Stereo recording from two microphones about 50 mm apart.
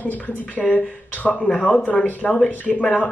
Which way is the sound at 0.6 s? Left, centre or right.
Left.